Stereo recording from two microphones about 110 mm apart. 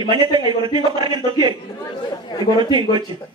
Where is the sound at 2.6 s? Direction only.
45° right (ahead or behind).